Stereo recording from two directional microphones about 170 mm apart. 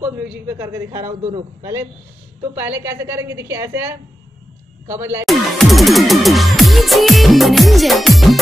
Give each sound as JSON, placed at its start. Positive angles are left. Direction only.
{"t": 0.6, "sound": "a woman's voice", "side_deg": -20}
{"t": 5.2, "sound": "music", "side_deg": 0}